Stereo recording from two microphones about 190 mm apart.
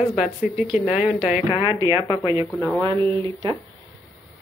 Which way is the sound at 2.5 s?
5° left (ahead or behind).